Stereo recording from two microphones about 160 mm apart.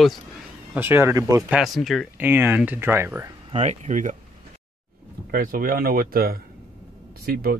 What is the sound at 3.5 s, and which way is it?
Speech, 45° right (ahead or behind).